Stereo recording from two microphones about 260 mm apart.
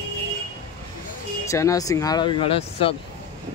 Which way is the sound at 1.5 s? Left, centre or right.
Centre.